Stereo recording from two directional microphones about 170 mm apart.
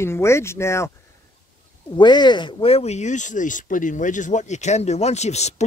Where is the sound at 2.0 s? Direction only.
25° left (ahead or behind).